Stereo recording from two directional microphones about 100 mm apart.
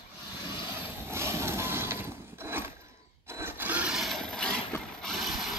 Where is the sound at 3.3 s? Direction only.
20° right (ahead or behind); by 4.6 s 5° left (ahead or behind).